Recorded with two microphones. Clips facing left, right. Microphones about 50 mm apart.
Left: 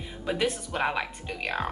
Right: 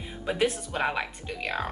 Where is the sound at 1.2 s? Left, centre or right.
Left.